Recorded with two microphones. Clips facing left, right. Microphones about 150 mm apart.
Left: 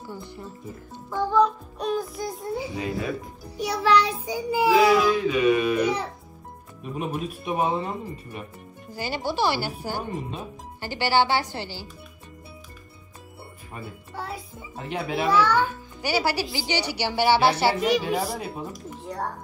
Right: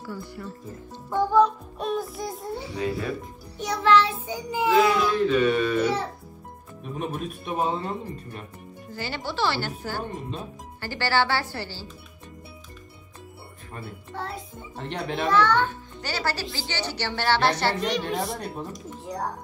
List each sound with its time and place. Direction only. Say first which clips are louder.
0.0 s speech: right 2 dB; 20° left (ahead or behind)
1.3 s music: even; centre (ahead or behind)
4.0 s child singing: left 1 dB; 15° left (ahead or behind)
6.8 s a woman's voice: left 1 dB; 5° left (ahead or behind)
7.4 s child singing: left 2 dB; 15° left (ahead or behind)
14.1 s a woman's voice: right 1 dB; 5° left (ahead or behind)